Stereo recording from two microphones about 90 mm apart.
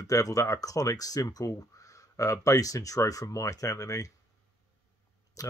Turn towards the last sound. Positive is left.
turn(degrees=40)  # may be behind; listen again after turning